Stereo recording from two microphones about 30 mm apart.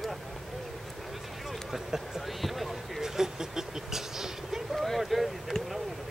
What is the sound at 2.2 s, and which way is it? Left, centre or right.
Speech, centre.